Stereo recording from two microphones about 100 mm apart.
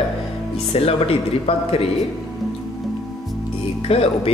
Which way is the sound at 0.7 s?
80° left.